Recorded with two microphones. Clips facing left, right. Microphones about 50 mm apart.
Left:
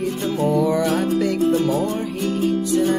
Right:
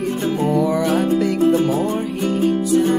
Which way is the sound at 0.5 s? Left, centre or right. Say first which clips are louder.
Right 1 dB; centre.